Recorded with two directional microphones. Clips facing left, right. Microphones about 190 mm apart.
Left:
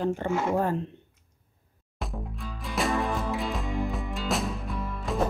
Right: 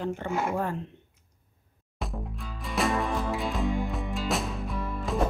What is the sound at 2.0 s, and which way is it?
Music, centre (ahead or behind).